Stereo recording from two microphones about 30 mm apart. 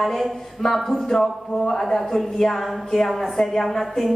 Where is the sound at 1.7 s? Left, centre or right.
Centre.